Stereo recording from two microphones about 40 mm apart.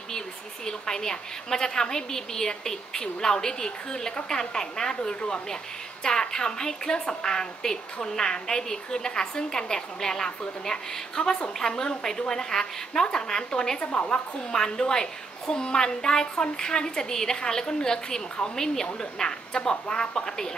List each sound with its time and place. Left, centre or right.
0.7 s a woman's voice: centre
14.5 s a woman's voice: centre